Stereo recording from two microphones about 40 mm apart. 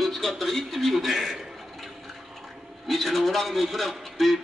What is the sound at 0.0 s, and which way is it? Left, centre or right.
A man's voice, centre.